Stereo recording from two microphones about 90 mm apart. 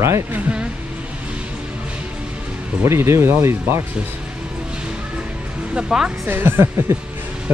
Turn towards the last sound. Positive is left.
turn(degrees=-30)  # may be behind; listen again after turning